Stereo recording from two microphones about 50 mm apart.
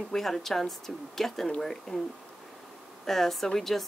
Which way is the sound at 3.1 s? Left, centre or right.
Centre.